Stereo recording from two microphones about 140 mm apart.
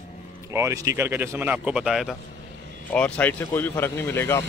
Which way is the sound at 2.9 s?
10° left (ahead or behind).